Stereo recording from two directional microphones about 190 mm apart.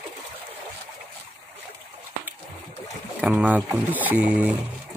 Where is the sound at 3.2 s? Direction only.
5° right (ahead or behind).